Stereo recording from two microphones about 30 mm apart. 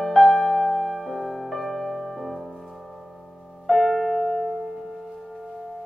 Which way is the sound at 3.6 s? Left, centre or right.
Centre.